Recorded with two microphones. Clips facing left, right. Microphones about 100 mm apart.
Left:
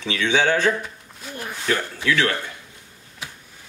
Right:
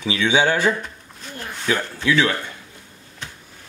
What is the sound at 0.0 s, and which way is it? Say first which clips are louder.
Speech: right 2 dB; 10° right (ahead or behind).